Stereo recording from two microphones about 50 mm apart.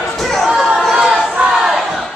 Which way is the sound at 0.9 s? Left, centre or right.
Centre.